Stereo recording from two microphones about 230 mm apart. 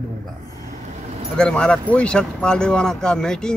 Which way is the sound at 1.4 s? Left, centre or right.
Centre.